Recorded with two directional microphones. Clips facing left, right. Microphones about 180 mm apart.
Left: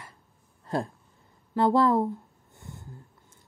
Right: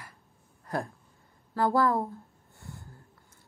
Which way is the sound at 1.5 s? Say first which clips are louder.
Left 4 dB; 20° left (ahead or behind).